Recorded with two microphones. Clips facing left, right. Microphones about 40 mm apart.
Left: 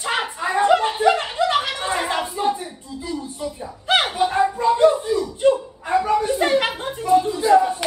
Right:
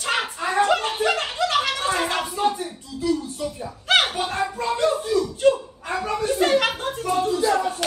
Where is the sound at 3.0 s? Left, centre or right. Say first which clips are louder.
Right 4 dB; right.